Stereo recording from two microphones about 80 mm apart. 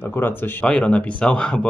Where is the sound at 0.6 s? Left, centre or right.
Centre.